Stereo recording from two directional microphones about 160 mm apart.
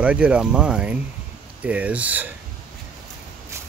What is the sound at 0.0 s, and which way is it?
Speech, 5° right (ahead or behind).